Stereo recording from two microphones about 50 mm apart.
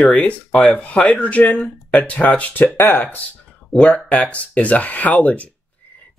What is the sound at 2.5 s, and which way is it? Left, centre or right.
Speech, left.